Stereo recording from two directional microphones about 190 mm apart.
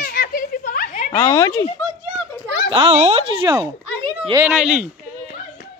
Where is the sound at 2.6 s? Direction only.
25° right (ahead or behind).